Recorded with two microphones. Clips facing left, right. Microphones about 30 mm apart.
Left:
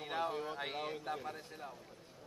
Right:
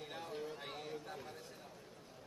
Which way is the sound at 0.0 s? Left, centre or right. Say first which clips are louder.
Left 7 dB; left.